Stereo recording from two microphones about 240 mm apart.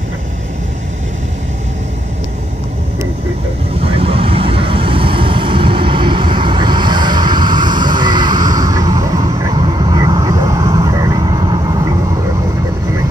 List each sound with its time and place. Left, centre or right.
3.8 s vehicle: right